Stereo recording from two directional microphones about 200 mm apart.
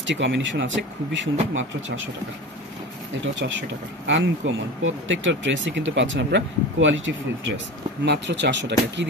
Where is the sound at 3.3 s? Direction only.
65° right (ahead or behind).